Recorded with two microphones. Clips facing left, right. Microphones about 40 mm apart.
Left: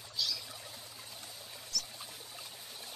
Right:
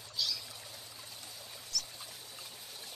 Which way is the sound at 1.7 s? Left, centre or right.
Centre.